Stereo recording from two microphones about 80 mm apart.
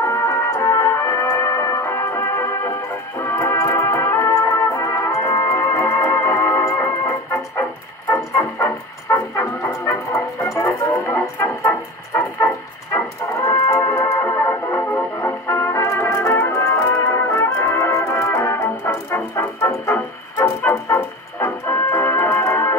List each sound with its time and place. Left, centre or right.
0.0 s music: left
8.6 s music: left
14.1 s music: left
16.4 s music: left